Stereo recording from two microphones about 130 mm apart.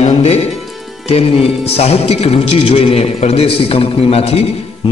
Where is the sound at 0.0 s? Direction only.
55° left (ahead or behind).